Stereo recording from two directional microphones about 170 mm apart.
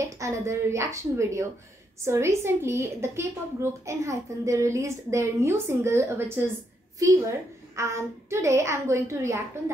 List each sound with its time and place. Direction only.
0.0 s a woman's voice: 15° right (ahead or behind)